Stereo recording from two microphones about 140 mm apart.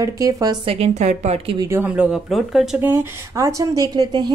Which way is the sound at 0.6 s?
50° right (ahead or behind).